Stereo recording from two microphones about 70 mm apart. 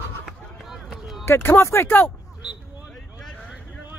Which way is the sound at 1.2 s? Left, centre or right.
Left.